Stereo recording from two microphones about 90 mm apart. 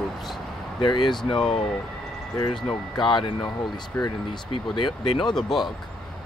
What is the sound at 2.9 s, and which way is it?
Speech, 60° left (ahead or behind).